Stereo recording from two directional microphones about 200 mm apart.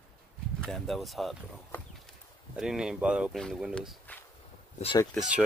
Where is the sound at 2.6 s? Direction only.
5° right (ahead or behind).